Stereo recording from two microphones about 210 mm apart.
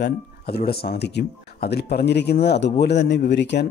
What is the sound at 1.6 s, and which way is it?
Speech, 50° left (ahead or behind).